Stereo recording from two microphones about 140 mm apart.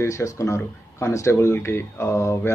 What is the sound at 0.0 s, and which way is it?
Speech, 20° left (ahead or behind).